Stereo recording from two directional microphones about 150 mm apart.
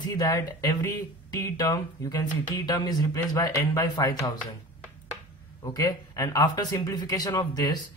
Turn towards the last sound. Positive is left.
turn(degrees=25)  # may be behind; listen again after turning